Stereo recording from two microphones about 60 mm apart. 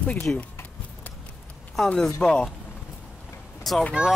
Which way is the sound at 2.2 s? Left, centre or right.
Centre.